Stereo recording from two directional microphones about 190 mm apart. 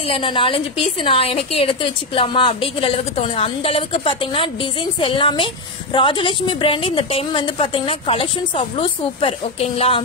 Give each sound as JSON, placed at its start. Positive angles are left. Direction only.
{"t": 0.1, "sound": "a woman's voice", "side_deg": 25}